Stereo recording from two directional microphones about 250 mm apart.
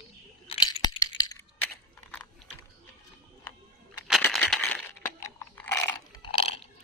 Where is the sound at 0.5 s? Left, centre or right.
Centre.